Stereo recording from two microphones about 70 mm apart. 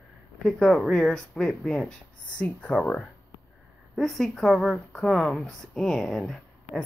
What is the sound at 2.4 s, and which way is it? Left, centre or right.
Speech, left.